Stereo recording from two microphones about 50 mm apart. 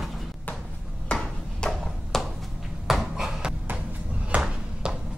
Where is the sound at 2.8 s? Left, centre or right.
Centre.